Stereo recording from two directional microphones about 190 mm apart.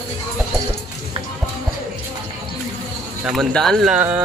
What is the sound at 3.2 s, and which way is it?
A man's voice, centre (ahead or behind).